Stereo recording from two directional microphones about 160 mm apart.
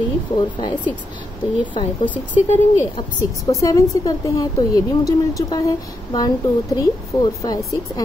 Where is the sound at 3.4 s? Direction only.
20° left (ahead or behind).